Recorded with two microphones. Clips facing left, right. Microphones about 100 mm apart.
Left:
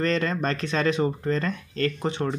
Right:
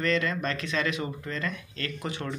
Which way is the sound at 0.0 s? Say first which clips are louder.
Left 3 dB; 35° left (ahead or behind).